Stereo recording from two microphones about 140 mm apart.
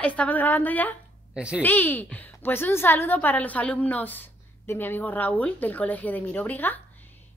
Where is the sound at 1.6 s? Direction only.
10° left (ahead or behind).